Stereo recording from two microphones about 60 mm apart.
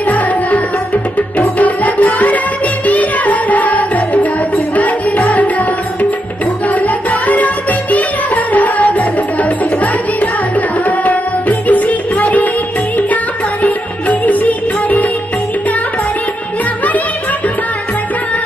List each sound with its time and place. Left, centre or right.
0.0 s music: left
1.6 s music: left
4.7 s tabla: left
6.7 s music: left